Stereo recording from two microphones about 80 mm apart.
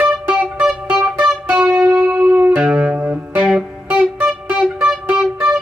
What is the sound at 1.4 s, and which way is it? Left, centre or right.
Music, right.